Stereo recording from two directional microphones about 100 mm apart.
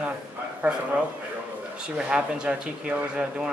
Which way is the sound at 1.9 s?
10° right (ahead or behind).